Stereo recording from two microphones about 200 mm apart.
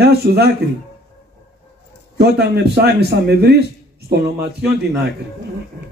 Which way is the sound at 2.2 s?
50° right (ahead or behind).